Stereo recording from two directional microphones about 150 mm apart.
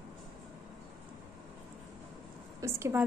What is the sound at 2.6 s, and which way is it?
Speech, 20° right (ahead or behind).